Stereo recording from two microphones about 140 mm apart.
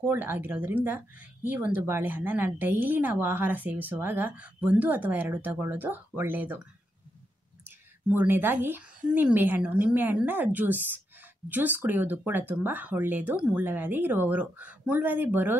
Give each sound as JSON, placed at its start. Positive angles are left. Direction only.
{"t": 0.0, "sound": "speech", "side_deg": -15}